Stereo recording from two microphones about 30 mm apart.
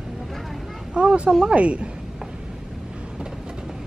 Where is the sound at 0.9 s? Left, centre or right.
Right.